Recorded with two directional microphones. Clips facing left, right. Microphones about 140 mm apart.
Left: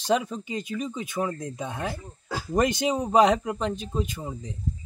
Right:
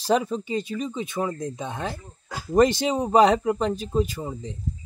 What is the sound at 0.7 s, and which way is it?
Speech, centre (ahead or behind).